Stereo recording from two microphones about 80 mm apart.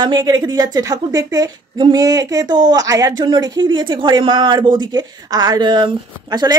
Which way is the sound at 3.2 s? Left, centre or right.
Right.